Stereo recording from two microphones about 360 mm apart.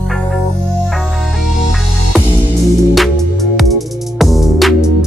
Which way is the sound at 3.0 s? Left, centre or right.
Centre.